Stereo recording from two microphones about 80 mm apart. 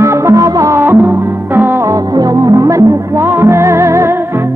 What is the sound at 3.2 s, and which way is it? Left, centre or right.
Music, right.